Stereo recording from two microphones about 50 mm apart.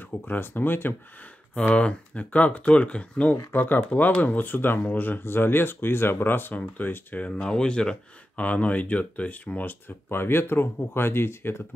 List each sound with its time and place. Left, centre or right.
0.2 s speech: left
1.8 s speech: left
3.5 s speech: left
7.2 s speech: centre
8.4 s speech: left